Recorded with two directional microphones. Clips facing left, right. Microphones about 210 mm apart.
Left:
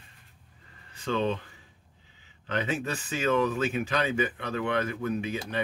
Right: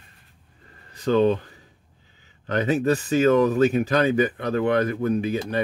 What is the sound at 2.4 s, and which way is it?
Speech, 40° right (ahead or behind).